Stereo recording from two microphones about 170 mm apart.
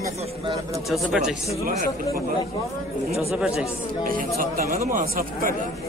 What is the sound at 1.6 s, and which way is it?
Speech, 60° right (ahead or behind).